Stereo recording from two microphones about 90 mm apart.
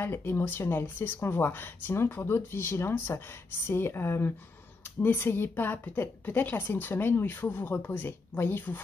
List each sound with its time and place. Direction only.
0.0 s a woman's voice: 25° left (ahead or behind)